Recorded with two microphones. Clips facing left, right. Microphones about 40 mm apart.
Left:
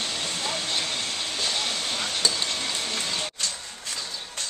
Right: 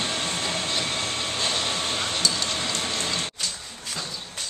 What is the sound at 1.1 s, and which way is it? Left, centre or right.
Train, right.